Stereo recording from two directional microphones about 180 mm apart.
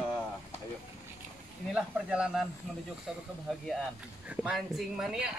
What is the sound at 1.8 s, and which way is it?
Speech, 5° right (ahead or behind).